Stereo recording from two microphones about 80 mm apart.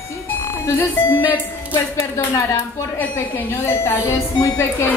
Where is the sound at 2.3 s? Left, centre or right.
Left.